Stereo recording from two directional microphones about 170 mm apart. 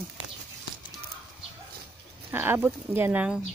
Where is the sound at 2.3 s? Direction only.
15° right (ahead or behind).